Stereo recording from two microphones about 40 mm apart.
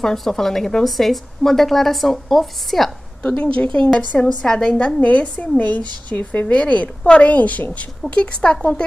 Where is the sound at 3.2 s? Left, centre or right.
Left.